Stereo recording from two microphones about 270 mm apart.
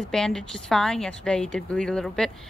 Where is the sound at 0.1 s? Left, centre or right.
Centre.